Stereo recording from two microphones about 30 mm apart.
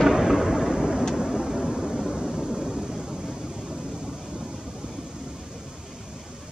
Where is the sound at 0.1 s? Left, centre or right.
Centre.